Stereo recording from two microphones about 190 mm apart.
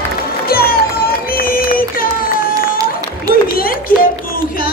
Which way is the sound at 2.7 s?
20° right (ahead or behind).